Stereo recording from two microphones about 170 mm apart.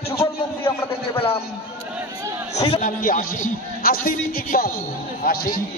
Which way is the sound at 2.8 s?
55° left (ahead or behind).